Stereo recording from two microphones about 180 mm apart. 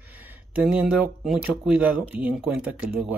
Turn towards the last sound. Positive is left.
turn(degrees=-5)  # may be behind; listen again after turning